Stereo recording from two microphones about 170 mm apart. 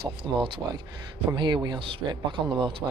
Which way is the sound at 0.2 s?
25° right (ahead or behind).